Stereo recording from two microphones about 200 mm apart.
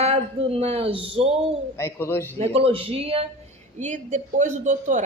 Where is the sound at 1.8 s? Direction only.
10° left (ahead or behind).